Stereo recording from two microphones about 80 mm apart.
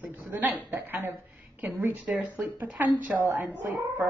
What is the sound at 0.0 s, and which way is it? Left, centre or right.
A man's voice, right.